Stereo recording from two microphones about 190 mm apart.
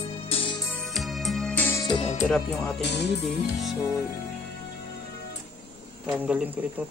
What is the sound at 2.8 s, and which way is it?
Music, 60° left (ahead or behind).